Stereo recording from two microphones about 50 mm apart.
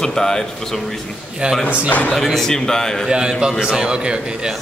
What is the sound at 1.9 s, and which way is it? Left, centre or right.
Speech, left.